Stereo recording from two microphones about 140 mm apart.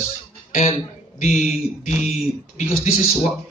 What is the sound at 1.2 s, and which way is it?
Speech, 55° left (ahead or behind).